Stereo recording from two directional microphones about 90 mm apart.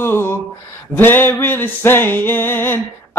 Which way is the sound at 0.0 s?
25° left (ahead or behind).